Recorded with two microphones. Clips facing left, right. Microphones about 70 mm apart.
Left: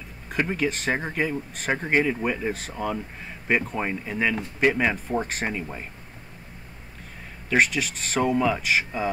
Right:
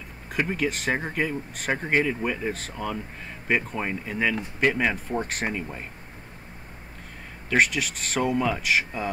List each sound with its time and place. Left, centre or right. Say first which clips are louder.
0.3 s speech: left 1 dB; centre
7.4 s speech: left 1 dB; centre